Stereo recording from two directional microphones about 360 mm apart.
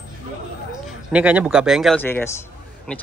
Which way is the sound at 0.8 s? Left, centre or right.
Centre.